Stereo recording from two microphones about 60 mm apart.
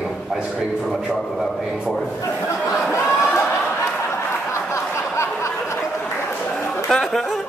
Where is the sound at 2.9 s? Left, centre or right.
Left.